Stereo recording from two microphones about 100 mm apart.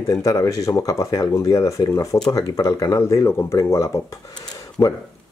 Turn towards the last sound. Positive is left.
turn(degrees=15)  # may be behind; listen again after turning